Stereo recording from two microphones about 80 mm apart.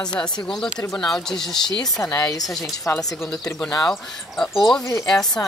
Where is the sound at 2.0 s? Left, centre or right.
Left.